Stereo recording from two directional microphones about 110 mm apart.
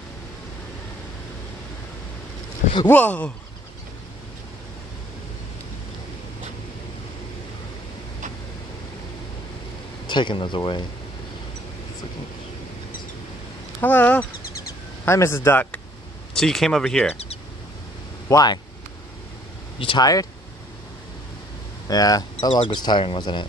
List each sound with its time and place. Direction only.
2.9 s speech: 15° left (ahead or behind)
10.0 s speech: 45° left (ahead or behind)
13.7 s a man's voice: 15° left (ahead or behind)
16.3 s speech: 5° left (ahead or behind)
18.3 s speech: 40° left (ahead or behind)
19.8 s speech: 50° left (ahead or behind)
21.8 s speech: 35° left (ahead or behind)
22.6 s speech: 50° left (ahead or behind)